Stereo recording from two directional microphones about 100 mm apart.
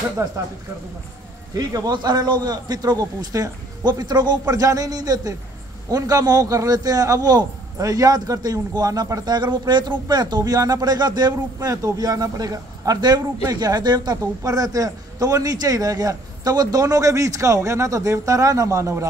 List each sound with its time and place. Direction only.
0.2 s a man's voice: 30° right (ahead or behind)
1.5 s a man's voice: 35° right (ahead or behind)